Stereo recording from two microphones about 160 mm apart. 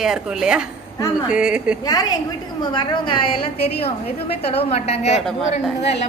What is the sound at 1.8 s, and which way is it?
A woman's voice, 25° left (ahead or behind).